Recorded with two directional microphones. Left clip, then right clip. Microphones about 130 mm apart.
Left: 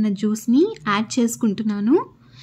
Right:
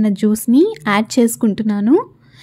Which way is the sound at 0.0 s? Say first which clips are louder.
Right 6 dB; 45° right (ahead or behind).